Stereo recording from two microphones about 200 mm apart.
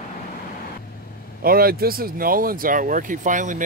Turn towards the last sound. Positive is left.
turn(degrees=-40)  # may be behind; listen again after turning